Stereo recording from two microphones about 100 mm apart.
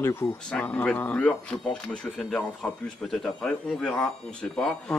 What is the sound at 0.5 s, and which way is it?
Speech, 10° left (ahead or behind).